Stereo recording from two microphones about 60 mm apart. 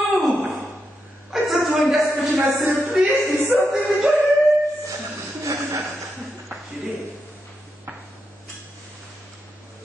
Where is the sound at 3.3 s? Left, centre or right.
Right.